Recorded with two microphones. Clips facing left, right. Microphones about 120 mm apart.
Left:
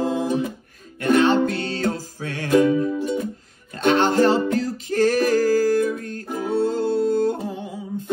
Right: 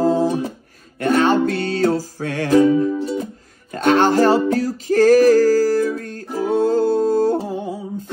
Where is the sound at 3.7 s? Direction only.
45° right (ahead or behind).